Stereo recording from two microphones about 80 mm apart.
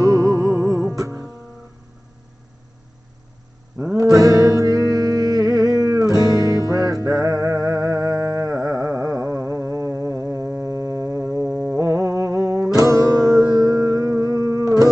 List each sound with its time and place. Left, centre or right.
0.0 s music: right
3.9 s music: right
11.7 s music: right